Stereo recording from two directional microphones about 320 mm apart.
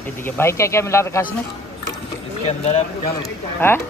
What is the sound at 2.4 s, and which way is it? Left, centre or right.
Speech, left.